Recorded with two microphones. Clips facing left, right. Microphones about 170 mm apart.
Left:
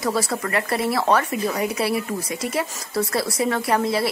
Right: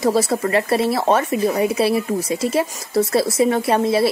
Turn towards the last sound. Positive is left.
turn(degrees=-25)  # may be behind; listen again after turning